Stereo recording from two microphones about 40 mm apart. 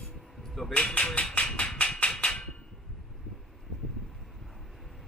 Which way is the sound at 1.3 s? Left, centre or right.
Left.